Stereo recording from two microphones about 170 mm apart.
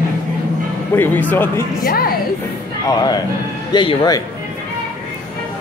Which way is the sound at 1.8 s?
60° left (ahead or behind).